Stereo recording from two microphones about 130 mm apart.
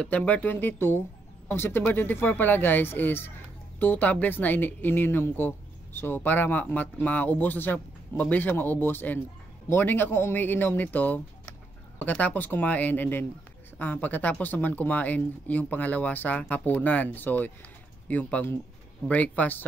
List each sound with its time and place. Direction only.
0.0 s speech: 10° left (ahead or behind)